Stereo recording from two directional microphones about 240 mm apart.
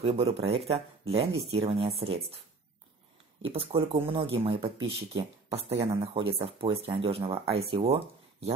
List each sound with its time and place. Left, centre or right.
0.0 s speech: right
3.4 s speech: right